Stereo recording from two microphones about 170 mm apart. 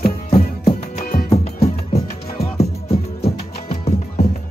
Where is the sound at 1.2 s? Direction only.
35° left (ahead or behind).